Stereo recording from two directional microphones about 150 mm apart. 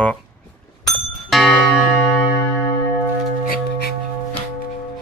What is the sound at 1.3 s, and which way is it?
Music, centre (ahead or behind).